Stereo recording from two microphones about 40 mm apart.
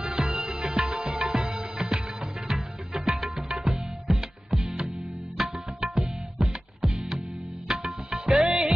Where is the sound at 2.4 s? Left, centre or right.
Centre.